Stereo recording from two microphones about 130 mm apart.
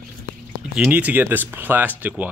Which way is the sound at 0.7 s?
10° right (ahead or behind).